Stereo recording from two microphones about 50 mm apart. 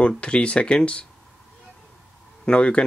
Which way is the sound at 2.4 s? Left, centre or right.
Centre.